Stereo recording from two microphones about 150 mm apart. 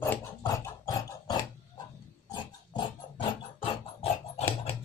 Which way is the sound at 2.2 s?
30° left (ahead or behind).